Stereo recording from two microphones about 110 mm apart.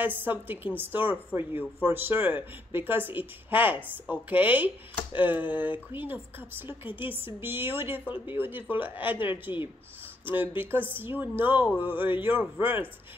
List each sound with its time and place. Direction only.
0.0 s speech: 15° right (ahead or behind)